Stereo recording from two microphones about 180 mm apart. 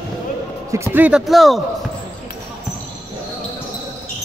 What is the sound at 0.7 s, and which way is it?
Speech, 15° right (ahead or behind).